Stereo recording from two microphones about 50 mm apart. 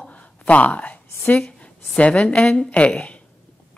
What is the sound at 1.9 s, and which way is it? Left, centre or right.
A woman's voice, left.